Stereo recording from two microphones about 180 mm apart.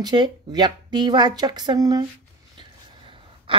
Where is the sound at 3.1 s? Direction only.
30° right (ahead or behind).